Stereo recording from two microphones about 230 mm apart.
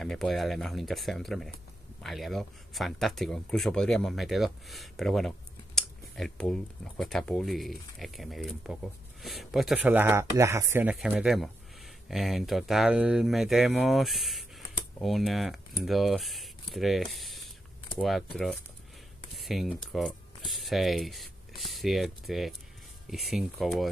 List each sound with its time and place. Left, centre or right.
0.0 s speech: centre
5.8 s scissors: centre
7.0 s speech: centre